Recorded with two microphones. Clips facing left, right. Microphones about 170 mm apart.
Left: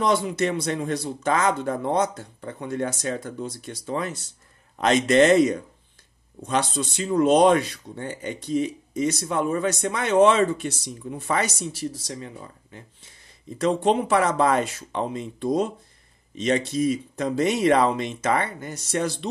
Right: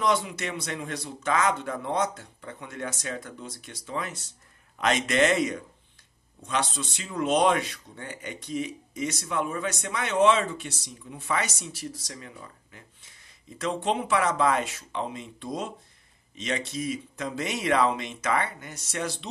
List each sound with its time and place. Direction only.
0.0 s speech: 35° left (ahead or behind)